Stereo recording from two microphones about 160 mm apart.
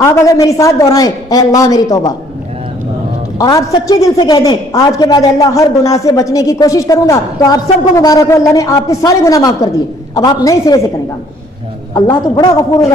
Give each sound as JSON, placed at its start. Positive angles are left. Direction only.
{"t": 0.0, "sound": "a man's voice", "side_deg": 20}
{"t": 3.3, "sound": "a man's voice", "side_deg": 25}
{"t": 11.9, "sound": "a man's voice", "side_deg": 25}